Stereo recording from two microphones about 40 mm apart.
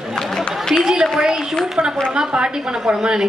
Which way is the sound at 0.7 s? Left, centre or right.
Centre.